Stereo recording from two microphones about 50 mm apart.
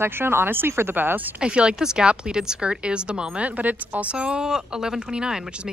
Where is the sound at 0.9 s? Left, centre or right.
Right.